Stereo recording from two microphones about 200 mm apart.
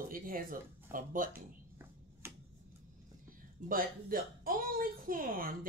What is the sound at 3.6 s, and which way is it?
Speech, 45° right (ahead or behind).